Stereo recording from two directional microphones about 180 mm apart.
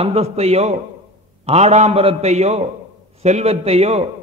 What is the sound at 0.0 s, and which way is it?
A man's voice, 35° right (ahead or behind).